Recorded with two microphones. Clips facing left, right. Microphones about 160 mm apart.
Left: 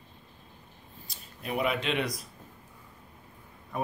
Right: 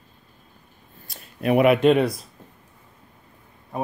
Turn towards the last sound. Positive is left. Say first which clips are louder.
# right 4 dB
turn(degrees=-25)  # may be behind; listen again after turning